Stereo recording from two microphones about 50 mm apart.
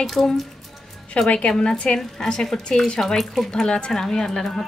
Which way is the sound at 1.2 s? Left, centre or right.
Centre.